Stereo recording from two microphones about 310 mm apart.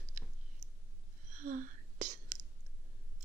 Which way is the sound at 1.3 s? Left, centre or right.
Right.